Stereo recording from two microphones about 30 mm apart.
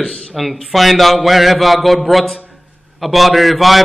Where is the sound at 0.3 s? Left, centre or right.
Centre.